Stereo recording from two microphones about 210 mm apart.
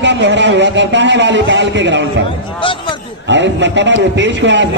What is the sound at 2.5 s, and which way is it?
Speech, 25° left (ahead or behind).